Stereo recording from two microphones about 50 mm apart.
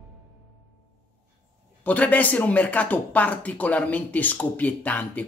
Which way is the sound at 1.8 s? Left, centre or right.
Left.